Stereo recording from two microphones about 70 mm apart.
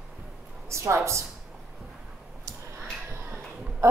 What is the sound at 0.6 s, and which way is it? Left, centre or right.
Speech, right.